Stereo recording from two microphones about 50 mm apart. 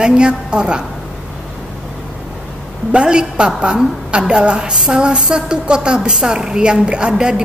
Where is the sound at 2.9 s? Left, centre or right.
Centre.